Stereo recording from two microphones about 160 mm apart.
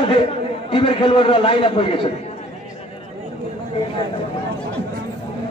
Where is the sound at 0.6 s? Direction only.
35° left (ahead or behind).